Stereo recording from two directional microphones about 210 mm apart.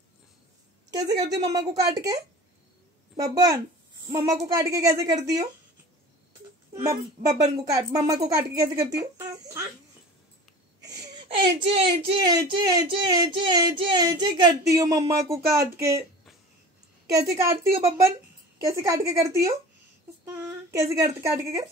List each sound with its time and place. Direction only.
0.8 s speech: 15° right (ahead or behind)
7.2 s speech: 35° right (ahead or behind)
7.5 s speech: 15° right (ahead or behind)
10.8 s a sound: 15° right (ahead or behind)
11.6 s speech: 25° right (ahead or behind)
17.1 s speech: 15° right (ahead or behind)